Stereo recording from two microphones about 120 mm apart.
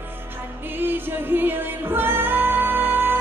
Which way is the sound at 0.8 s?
15° right (ahead or behind).